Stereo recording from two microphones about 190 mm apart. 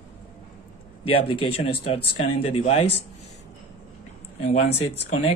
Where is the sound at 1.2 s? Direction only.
30° left (ahead or behind).